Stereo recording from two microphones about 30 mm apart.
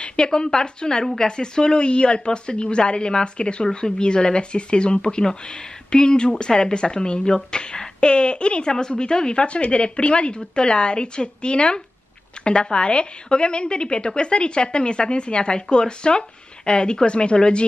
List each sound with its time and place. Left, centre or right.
0.0 s a woman's voice: left
12.4 s a sound: left
12.7 s a woman's voice: left